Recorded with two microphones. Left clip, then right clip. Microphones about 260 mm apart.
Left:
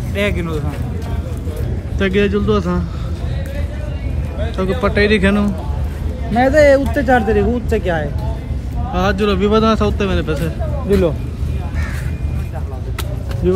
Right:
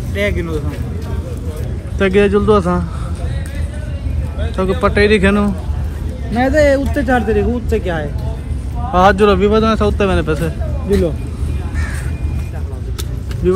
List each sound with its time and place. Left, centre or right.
0.1 s speech: centre
2.0 s speech: centre
4.6 s speech: centre
6.3 s speech: left
8.9 s speech: centre
9.5 s speech: centre